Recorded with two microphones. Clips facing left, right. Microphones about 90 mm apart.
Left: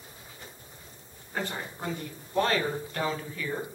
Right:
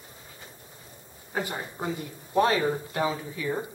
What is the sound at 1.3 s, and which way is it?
Speech, 10° right (ahead or behind).